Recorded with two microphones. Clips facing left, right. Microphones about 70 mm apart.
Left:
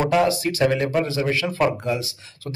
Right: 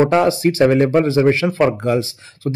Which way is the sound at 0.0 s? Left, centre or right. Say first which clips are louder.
Right 5 dB; right.